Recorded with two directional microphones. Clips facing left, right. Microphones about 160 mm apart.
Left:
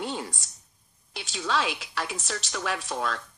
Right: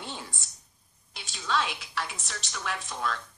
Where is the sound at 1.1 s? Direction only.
90° left.